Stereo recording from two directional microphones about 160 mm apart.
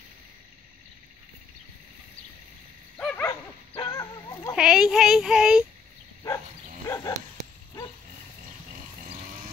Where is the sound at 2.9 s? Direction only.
10° left (ahead or behind).